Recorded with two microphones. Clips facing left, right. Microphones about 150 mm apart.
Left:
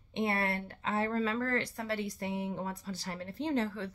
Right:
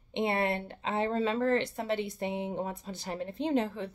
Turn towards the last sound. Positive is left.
turn(degrees=-20)  # may be behind; listen again after turning